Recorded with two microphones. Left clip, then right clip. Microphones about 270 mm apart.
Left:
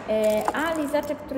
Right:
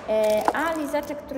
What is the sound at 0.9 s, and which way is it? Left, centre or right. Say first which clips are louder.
Speech: left 2 dB; centre.